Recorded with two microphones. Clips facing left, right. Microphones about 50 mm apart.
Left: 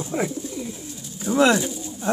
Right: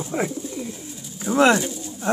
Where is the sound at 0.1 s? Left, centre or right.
Right.